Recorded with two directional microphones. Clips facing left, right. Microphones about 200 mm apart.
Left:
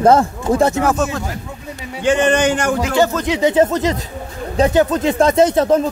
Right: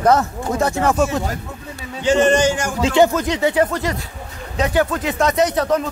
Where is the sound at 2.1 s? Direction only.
60° left (ahead or behind).